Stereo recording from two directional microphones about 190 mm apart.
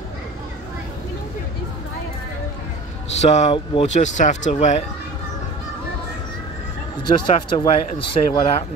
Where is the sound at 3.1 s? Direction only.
35° left (ahead or behind).